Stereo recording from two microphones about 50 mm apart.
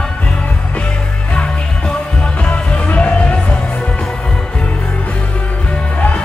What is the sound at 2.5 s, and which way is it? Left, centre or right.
Music, left.